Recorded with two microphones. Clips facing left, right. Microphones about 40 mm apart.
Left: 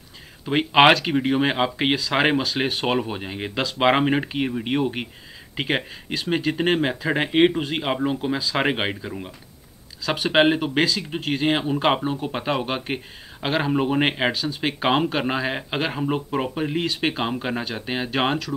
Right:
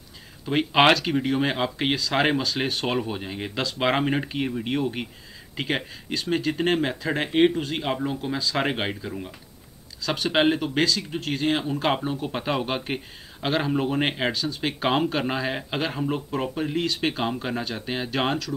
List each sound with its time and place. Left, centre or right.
0.5 s speech: centre
8.3 s speech: centre